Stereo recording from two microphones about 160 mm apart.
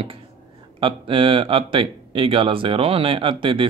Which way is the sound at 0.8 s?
35° right (ahead or behind).